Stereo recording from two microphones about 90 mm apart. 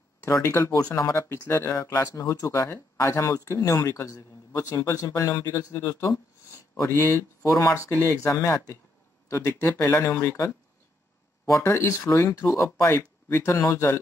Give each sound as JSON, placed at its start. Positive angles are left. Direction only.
{"t": 0.2, "sound": "speech", "side_deg": 35}
{"t": 7.4, "sound": "speech", "side_deg": 35}
{"t": 11.4, "sound": "speech", "side_deg": 35}